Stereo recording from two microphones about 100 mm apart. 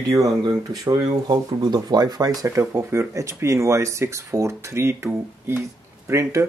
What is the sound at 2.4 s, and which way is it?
Speech, 30° right (ahead or behind).